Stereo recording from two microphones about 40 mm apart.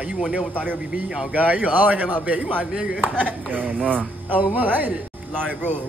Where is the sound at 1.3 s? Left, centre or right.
Right.